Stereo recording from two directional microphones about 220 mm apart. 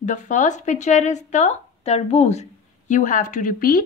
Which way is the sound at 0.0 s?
35° left (ahead or behind).